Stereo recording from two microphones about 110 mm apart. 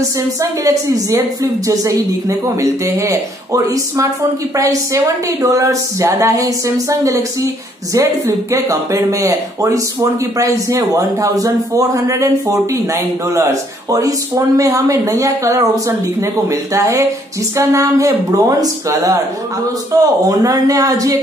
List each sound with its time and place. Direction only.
0.4 s a man's voice: 30° right (ahead or behind)